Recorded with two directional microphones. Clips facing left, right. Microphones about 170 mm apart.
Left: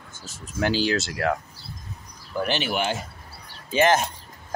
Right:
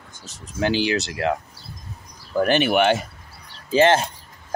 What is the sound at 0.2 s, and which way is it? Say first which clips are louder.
Speech: right 2 dB; 20° right (ahead or behind).